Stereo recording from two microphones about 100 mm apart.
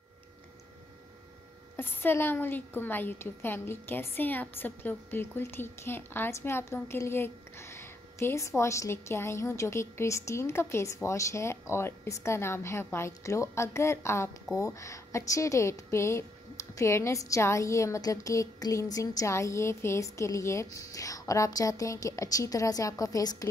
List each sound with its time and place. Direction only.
1.8 s a woman's voice: 20° left (ahead or behind)